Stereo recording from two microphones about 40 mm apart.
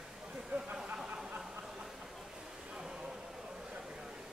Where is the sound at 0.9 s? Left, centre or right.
Right.